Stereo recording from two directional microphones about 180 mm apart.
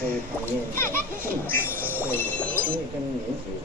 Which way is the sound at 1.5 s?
50° right (ahead or behind).